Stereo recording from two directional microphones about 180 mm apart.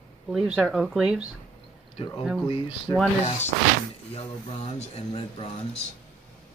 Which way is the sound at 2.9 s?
20° left (ahead or behind).